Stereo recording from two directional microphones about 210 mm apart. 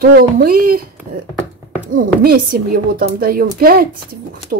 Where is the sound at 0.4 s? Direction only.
45° right (ahead or behind).